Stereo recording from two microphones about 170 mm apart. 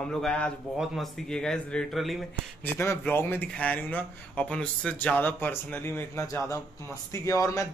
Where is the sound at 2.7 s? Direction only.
15° left (ahead or behind).